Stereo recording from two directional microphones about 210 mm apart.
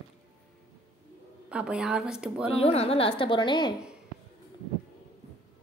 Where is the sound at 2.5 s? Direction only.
30° left (ahead or behind).